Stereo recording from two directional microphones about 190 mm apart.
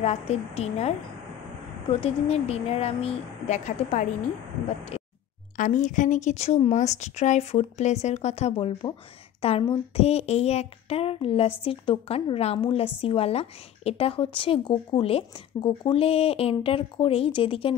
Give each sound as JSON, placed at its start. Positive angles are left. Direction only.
{"t": 0.0, "sound": "a woman's voice", "side_deg": 35}
{"t": 5.6, "sound": "a woman's voice", "side_deg": 40}